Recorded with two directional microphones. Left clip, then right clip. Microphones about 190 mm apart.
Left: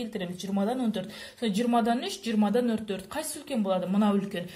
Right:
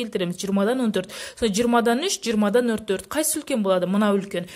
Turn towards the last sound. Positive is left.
turn(degrees=-40)  # may be behind; listen again after turning